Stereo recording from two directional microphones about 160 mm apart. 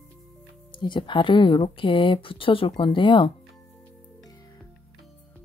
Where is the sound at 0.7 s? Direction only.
30° left (ahead or behind).